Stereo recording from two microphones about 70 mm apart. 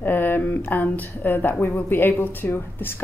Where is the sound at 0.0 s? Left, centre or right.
Left.